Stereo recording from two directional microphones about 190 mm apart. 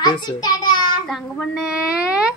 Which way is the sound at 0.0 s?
20° left (ahead or behind).